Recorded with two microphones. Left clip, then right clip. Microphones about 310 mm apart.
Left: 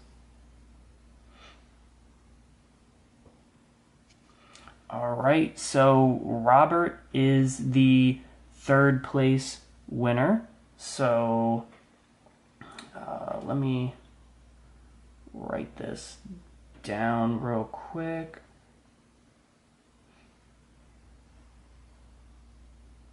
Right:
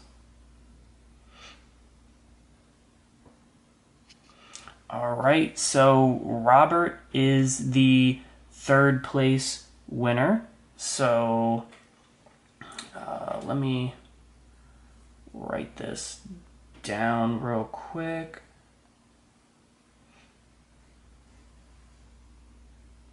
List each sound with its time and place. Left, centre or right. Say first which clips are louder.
4.1 s a sound: right 6 dB; centre
6.0 s speech: right 1 dB; centre
12.5 s dog: right 3 dB; centre
13.5 s speech: even; centre
15.5 s speech: right 1 dB; centre